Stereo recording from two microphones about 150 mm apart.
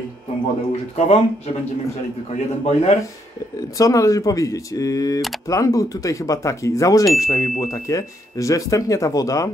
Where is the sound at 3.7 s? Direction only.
20° left (ahead or behind).